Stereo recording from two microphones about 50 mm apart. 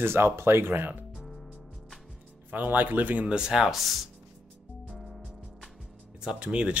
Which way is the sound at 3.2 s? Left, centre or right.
Centre.